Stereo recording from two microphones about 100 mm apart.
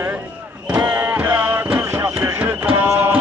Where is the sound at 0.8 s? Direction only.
20° right (ahead or behind).